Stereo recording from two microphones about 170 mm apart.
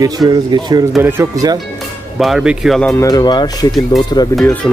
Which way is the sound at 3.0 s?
20° left (ahead or behind).